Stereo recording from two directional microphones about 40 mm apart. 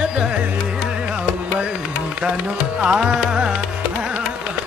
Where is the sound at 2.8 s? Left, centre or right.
Right.